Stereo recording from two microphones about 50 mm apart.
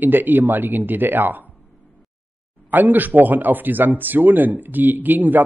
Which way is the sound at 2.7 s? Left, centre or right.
Right.